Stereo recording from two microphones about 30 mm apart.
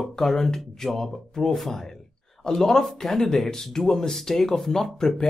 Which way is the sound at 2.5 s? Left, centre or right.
Centre.